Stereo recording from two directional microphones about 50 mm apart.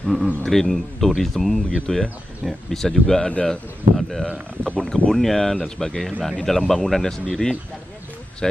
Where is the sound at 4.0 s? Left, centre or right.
Centre.